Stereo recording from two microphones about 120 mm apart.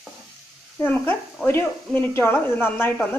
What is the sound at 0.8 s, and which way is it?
A woman's voice, 15° left (ahead or behind).